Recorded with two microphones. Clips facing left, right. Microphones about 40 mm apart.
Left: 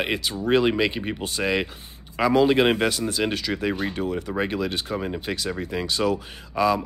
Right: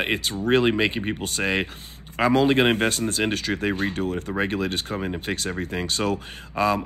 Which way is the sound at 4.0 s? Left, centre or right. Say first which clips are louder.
Even; left.